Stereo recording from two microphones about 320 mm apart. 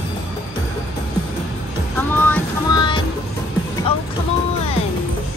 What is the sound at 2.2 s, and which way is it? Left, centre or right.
Music, centre.